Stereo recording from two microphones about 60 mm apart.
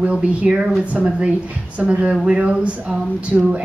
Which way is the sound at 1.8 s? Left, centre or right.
Centre.